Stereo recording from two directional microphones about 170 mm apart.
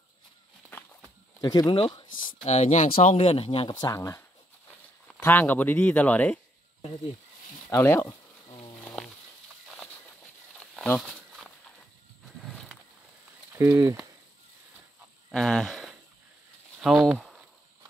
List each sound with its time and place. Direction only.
1.4 s speech: 25° left (ahead or behind)
2.4 s speech: 40° left (ahead or behind)
3.2 s speech: 35° left (ahead or behind)
5.2 s speech: 10° left (ahead or behind)
7.7 s speech: 15° left (ahead or behind)
8.8 s a sound: 5° left (ahead or behind)
10.6 s a sound: centre (ahead or behind)
12.4 s wild animals: 5° right (ahead or behind)
13.5 s speech: 15° right (ahead or behind)
15.3 s cricket: centre (ahead or behind)
16.8 s speech: 5° right (ahead or behind)